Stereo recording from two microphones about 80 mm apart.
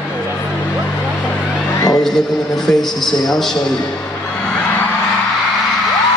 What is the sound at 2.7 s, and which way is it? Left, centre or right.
Speech, centre.